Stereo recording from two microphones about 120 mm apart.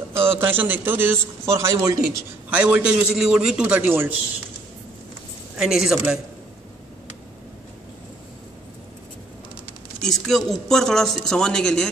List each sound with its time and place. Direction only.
0.1 s a man's voice: 20° right (ahead or behind)
2.5 s a man's voice: 10° right (ahead or behind)
5.6 s speech: 5° right (ahead or behind)
10.0 s speech: 5° left (ahead or behind)